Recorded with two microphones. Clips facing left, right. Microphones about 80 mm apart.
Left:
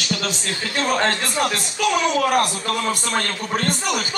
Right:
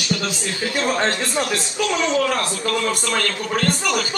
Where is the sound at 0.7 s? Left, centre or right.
Centre.